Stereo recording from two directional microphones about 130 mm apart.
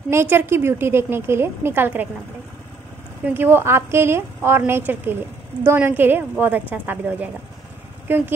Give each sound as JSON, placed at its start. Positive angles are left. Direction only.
{"t": 0.1, "sound": "a woman's voice", "side_deg": -15}
{"t": 3.3, "sound": "a woman's voice", "side_deg": -15}